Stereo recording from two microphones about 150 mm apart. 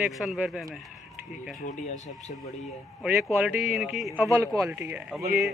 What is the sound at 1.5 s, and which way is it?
Speech, 55° left (ahead or behind).